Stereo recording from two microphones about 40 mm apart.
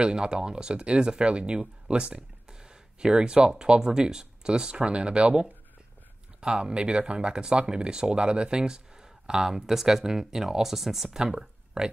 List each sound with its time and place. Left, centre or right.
0.0 s speech: right